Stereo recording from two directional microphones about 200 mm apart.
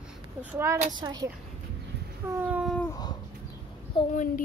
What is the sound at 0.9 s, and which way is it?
Speech, 20° right (ahead or behind).